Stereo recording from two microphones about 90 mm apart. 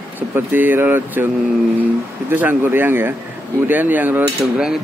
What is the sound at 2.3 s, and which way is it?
Speech, 20° right (ahead or behind).